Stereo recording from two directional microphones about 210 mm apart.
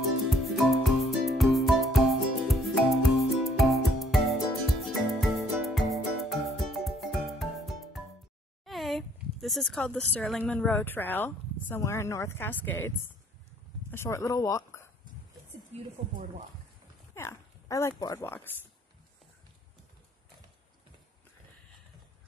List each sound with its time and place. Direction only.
0.3 s music: centre (ahead or behind)
8.6 s speech: centre (ahead or behind)
15.7 s a woman's voice: 35° right (ahead or behind)
17.1 s a sound: 15° left (ahead or behind)